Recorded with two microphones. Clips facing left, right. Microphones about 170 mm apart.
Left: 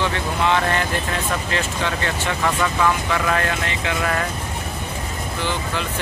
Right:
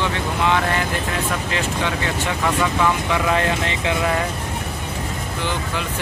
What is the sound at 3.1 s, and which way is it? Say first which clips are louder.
Speech: right 2 dB; 20° right (ahead or behind).